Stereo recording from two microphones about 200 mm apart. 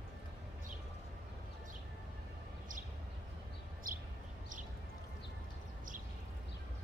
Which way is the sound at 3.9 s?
45° right (ahead or behind).